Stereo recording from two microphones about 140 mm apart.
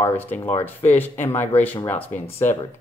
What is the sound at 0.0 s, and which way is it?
Speech, 15° left (ahead or behind).